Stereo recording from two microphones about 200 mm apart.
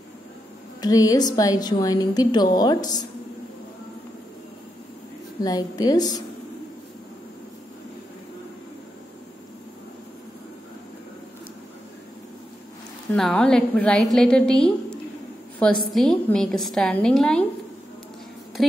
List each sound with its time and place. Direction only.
0.7 s a woman's voice: 20° left (ahead or behind)
5.4 s a woman's voice: 20° left (ahead or behind)
13.1 s a woman's voice: 5° left (ahead or behind)
15.9 s a woman's voice: centre (ahead or behind)
18.6 s a woman's voice: centre (ahead or behind)